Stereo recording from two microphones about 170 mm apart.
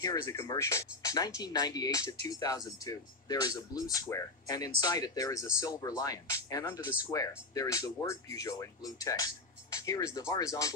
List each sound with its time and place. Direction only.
0.0 s speech: 20° left (ahead or behind)